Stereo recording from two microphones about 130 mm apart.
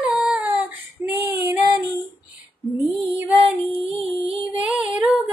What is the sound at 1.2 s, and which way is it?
Female singing, 20° right (ahead or behind).